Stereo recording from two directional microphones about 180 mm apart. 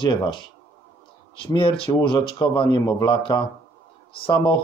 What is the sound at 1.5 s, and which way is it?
Speech, 30° left (ahead or behind).